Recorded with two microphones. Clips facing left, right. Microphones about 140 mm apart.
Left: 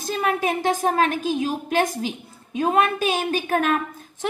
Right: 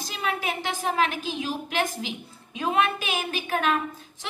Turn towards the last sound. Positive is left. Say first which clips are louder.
# left 7 dB
turn(degrees=45)  # may be behind; listen again after turning